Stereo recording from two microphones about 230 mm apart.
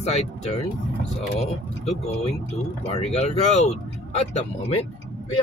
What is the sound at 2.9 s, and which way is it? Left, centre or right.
Speech, left.